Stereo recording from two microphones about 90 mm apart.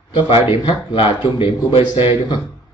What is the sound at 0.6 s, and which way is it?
Speech, 65° left (ahead or behind).